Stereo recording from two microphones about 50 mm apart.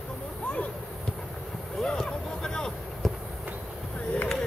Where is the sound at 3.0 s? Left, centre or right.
Centre.